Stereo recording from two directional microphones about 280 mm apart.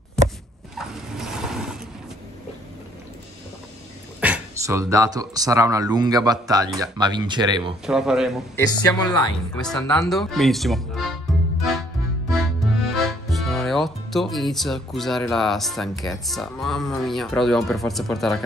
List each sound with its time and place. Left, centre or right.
0.2 s a sound: centre
0.7 s vehicle: centre
4.2 s speech: centre
7.8 s speech: centre
8.5 s speech: centre
9.7 s speech: centre
12.9 s speech: centre